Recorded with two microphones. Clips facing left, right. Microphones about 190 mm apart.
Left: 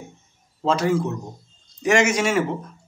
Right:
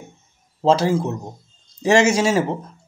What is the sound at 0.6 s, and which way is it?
Speech, 30° right (ahead or behind).